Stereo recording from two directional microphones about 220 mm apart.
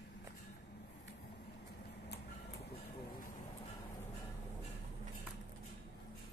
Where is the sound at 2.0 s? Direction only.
50° left (ahead or behind).